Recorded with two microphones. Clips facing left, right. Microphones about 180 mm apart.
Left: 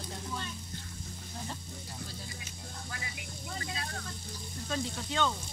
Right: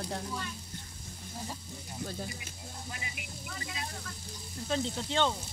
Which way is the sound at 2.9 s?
20° right (ahead or behind).